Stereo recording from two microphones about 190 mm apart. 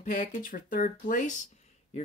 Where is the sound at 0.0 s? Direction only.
40° left (ahead or behind).